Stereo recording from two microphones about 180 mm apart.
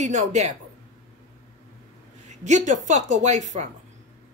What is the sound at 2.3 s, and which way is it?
A woman's voice, 40° right (ahead or behind).